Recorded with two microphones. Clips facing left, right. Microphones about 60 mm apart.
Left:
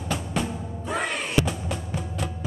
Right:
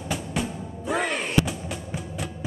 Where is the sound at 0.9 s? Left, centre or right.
Right.